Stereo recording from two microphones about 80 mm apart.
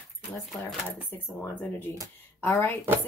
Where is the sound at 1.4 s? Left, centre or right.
Left.